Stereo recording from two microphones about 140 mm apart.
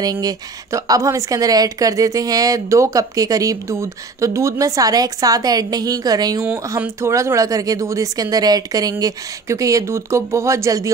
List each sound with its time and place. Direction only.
0.0 s a woman's voice: 25° right (ahead or behind)
6.4 s a woman's voice: 15° right (ahead or behind)